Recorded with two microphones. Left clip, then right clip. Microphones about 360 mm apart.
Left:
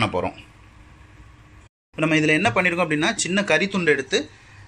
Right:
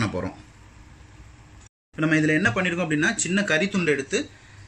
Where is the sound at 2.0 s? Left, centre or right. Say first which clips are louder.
Left 2 dB; centre.